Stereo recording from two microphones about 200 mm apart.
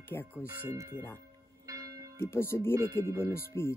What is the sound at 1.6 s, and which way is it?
Church bell, 15° right (ahead or behind).